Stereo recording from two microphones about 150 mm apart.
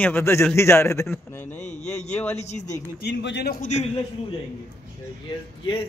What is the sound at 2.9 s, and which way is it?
Speech, 90° left.